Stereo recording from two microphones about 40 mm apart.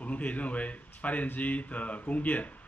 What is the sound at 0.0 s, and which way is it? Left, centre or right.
A man's voice, left.